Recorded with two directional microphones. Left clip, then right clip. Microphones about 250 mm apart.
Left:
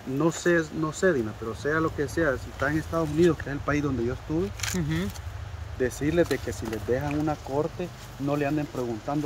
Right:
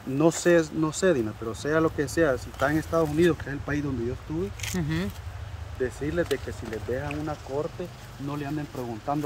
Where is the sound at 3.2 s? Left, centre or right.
Centre.